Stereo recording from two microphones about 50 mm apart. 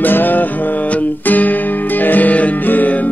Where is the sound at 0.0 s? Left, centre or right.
Left.